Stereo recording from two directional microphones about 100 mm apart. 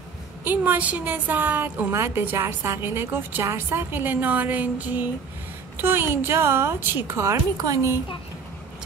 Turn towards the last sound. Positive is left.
turn(degrees=-30)  # may be behind; listen again after turning